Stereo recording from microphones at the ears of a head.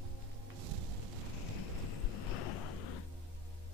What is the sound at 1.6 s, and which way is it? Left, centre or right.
Waves, left.